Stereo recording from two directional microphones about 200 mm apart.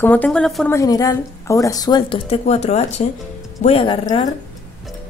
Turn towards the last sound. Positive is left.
turn(degrees=20)  # may be behind; listen again after turning